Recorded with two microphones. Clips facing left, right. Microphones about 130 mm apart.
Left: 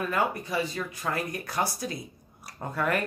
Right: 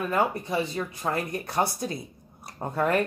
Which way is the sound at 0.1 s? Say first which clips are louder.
Right 5 dB; 25° right (ahead or behind).